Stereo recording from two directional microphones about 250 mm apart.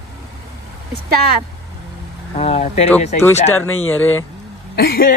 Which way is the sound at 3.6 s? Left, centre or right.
Left.